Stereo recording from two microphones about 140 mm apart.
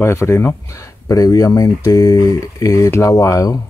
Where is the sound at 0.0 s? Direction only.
20° left (ahead or behind).